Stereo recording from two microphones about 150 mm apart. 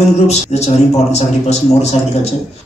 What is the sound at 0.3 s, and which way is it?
Speech, 45° left (ahead or behind).